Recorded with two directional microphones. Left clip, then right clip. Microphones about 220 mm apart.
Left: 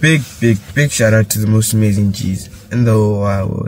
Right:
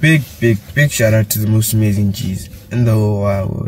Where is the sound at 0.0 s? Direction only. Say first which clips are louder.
Even; 25° left (ahead or behind).